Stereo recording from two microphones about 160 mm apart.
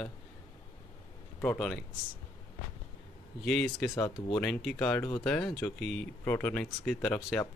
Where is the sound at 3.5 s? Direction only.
Centre (ahead or behind).